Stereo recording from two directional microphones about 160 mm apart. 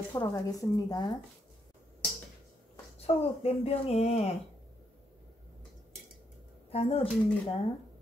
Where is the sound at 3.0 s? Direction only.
40° left (ahead or behind).